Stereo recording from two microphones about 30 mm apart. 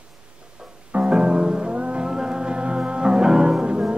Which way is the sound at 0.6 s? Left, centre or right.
Right.